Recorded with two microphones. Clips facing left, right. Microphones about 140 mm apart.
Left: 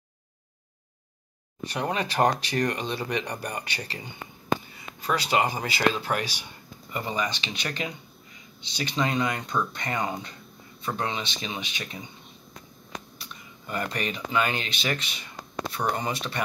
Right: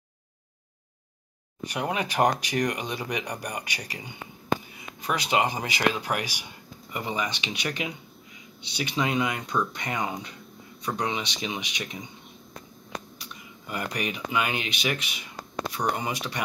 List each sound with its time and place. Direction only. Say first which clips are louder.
1.6 s speech: even; 15° right (ahead or behind)
13.2 s speech: right 1 dB; 10° right (ahead or behind)